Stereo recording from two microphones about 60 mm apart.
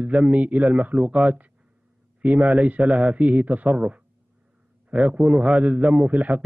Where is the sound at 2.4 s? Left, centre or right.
Centre.